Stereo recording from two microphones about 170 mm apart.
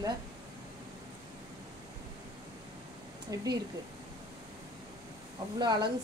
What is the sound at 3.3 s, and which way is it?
Speech, 20° right (ahead or behind).